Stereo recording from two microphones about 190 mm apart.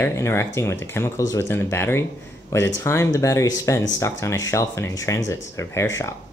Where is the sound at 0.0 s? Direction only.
15° left (ahead or behind).